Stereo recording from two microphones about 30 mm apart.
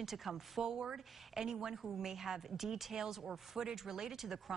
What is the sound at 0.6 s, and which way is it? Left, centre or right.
Speech, right.